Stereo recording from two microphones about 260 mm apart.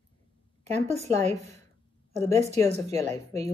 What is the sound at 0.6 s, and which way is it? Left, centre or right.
A woman's voice, right.